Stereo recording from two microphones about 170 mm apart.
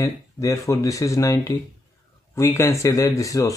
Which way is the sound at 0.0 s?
20° left (ahead or behind).